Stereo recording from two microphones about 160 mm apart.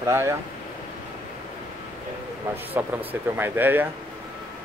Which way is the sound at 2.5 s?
10° right (ahead or behind).